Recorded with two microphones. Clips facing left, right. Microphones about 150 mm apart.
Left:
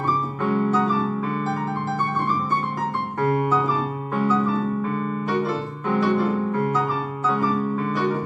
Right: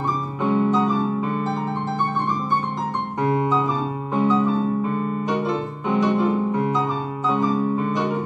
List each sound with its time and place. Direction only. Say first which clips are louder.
0.4 s music: right 3 dB; 20° right (ahead or behind)
3.2 s piano: even; 20° right (ahead or behind)
7.2 s music: right 2 dB; 20° right (ahead or behind)